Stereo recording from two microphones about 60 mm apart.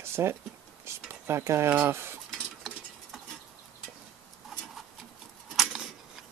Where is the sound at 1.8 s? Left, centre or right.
Right.